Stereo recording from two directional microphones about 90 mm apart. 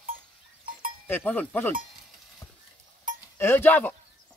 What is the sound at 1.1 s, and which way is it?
Speech, 20° left (ahead or behind).